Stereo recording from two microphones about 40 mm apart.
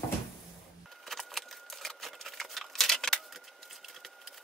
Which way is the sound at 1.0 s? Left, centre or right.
Centre.